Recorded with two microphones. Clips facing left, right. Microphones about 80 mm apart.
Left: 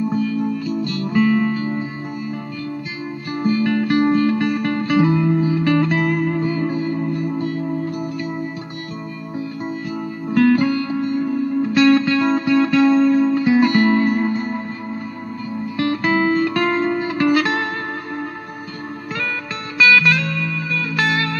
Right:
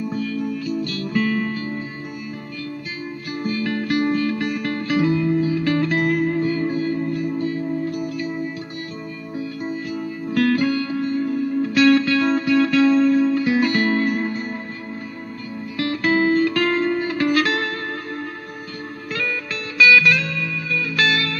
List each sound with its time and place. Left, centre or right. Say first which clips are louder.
0.1 s music: left 4 dB; centre
3.3 s music: left 6 dB; left
7.2 s music: left 1 dB; left
9.7 s music: left 1 dB; left
15.8 s music: left 1 dB; left
19.8 s music: even; left